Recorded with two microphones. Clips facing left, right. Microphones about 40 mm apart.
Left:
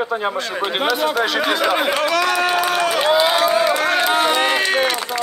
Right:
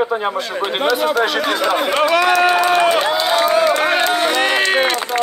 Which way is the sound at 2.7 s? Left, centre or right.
Right.